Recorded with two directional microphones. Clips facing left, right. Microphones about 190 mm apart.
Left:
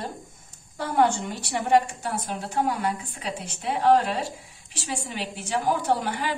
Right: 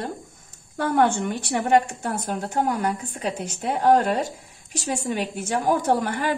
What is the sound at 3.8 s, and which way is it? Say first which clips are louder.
A woman's voice: right 2 dB; 50° right (ahead or behind).